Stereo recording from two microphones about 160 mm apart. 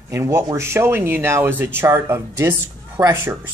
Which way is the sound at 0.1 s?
20° right (ahead or behind).